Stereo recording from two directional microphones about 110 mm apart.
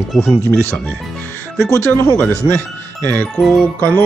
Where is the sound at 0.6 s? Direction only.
20° left (ahead or behind).